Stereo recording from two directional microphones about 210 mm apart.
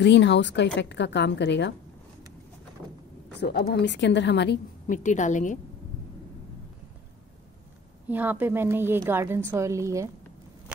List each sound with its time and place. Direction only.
0.0 s a woman's voice: 55° left (ahead or behind)
3.3 s a woman's voice: 50° left (ahead or behind)
4.8 s a woman's voice: 35° left (ahead or behind)
8.1 s a woman's voice: 10° right (ahead or behind)